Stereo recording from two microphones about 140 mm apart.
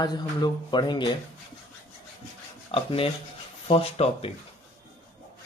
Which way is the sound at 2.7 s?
40° left (ahead or behind).